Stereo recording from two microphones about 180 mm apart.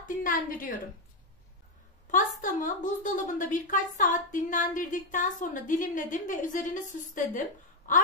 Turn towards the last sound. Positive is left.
turn(degrees=45)  # may be behind; listen again after turning